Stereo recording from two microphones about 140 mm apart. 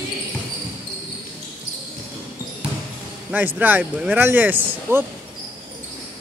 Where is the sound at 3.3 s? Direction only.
15° right (ahead or behind).